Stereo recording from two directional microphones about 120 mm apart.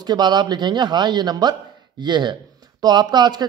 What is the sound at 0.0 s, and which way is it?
Speech, 35° right (ahead or behind).